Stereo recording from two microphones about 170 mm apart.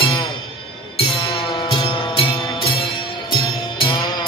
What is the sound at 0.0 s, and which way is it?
Music, 30° left (ahead or behind).